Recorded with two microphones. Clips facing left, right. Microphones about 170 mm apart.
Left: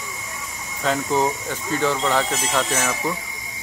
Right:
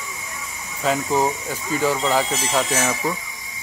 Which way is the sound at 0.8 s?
5° right (ahead or behind).